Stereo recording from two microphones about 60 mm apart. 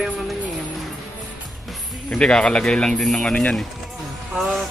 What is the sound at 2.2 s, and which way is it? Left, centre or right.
Speech, centre.